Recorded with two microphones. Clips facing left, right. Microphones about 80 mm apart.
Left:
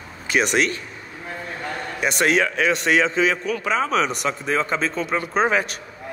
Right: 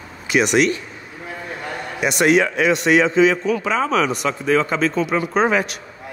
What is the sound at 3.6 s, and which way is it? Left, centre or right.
Speech, right.